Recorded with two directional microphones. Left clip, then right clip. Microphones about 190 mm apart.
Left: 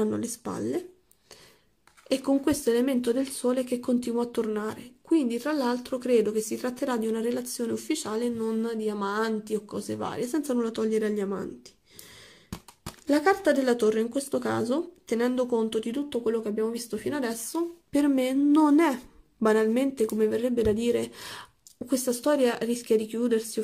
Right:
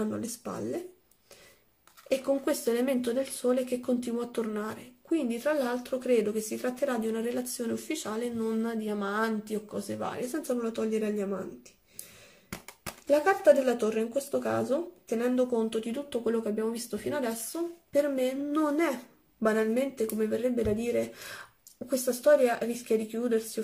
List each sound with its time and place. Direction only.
0.0 s speech: 45° left (ahead or behind)
2.0 s speech: 40° left (ahead or behind)
13.0 s speech: 45° left (ahead or behind)